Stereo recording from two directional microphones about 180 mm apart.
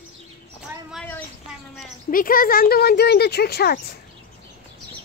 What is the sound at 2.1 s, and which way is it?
Speech, 50° left (ahead or behind).